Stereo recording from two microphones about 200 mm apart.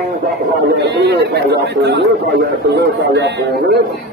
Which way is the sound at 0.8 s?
60° right (ahead or behind).